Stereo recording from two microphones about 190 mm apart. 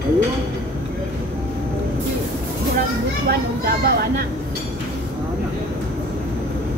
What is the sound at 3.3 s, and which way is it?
Speech, 55° right (ahead or behind).